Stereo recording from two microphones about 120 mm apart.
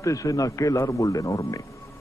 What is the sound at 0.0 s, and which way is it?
Speech, 25° left (ahead or behind).